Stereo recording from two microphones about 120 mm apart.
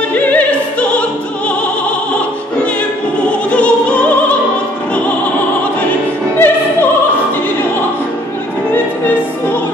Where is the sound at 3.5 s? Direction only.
10° left (ahead or behind).